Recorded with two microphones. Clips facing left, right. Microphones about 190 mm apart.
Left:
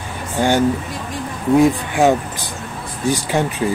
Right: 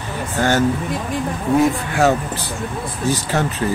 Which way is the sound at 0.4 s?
15° left (ahead or behind).